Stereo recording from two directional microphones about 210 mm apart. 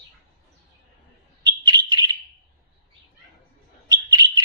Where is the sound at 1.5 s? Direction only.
20° right (ahead or behind).